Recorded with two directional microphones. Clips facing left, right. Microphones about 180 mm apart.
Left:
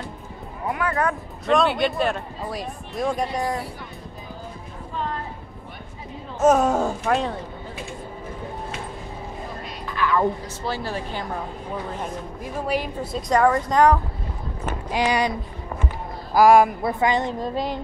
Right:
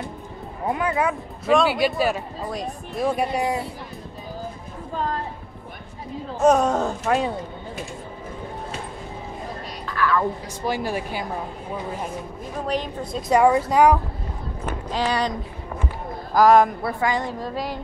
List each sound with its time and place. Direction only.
0.7 s speech: 20° right (ahead or behind)
0.9 s speech: 5° right (ahead or behind)
6.4 s speech: 5° left (ahead or behind)
7.1 s speech: 5° right (ahead or behind)
9.8 s frog: 20° left (ahead or behind)
10.6 s speech: 15° right (ahead or behind)
12.6 s a woman's voice: 10° left (ahead or behind)
13.3 s speech: 10° right (ahead or behind)
14.9 s a woman's voice: 10° left (ahead or behind)
16.3 s a woman's voice: 10° left (ahead or behind)
17.0 s a woman's voice: 20° left (ahead or behind)